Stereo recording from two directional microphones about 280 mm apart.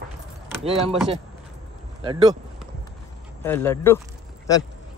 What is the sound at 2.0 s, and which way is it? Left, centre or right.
Speech, centre.